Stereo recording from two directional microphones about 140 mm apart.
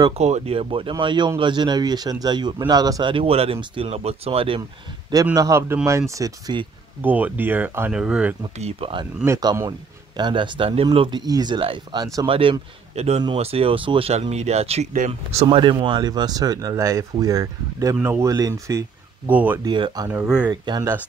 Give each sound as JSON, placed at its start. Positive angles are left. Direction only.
{"t": 0.2, "sound": "speech", "side_deg": -50}
{"t": 5.1, "sound": "speech", "side_deg": -25}
{"t": 7.0, "sound": "speech", "side_deg": -10}
{"t": 8.5, "sound": "speech", "side_deg": -45}
{"t": 9.2, "sound": "speech", "side_deg": -25}
{"t": 15.4, "sound": "speech", "side_deg": -30}
{"t": 19.2, "sound": "speech", "side_deg": -10}
{"t": 19.6, "sound": "speech", "side_deg": -30}
{"t": 20.1, "sound": "speech", "side_deg": -10}
{"t": 20.4, "sound": "speech", "side_deg": -30}